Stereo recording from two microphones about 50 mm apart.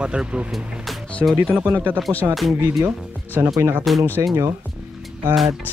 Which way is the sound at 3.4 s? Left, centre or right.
Right.